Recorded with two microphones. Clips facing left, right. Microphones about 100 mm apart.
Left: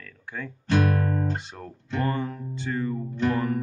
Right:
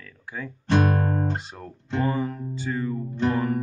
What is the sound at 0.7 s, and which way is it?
Guitar, 30° right (ahead or behind).